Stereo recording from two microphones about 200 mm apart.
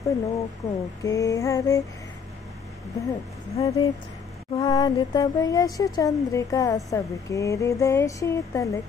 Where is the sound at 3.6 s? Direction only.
15° left (ahead or behind).